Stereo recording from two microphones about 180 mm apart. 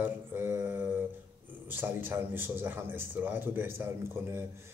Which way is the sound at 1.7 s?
10° right (ahead or behind).